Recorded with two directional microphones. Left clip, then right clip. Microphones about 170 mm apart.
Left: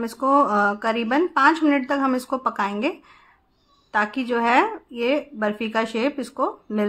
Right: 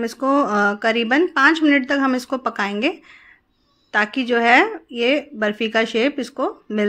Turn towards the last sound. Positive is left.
turn(degrees=-15)  # may be behind; listen again after turning